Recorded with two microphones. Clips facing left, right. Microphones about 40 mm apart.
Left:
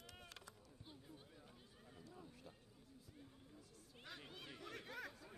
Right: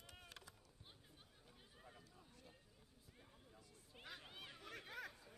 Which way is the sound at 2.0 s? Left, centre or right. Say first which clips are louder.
Left 6 dB; centre.